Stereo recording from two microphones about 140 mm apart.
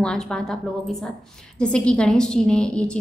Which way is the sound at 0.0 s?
5° left (ahead or behind).